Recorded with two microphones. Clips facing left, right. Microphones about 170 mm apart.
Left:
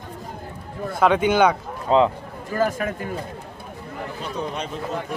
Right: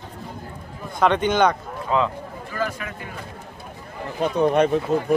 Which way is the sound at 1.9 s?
30° left (ahead or behind).